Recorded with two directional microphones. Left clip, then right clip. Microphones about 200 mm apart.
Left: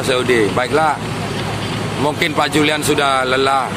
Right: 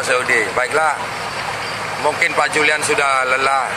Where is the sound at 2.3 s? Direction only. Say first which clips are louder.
Even; 5° left (ahead or behind).